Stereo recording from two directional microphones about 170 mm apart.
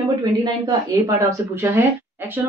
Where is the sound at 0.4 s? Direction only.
20° right (ahead or behind).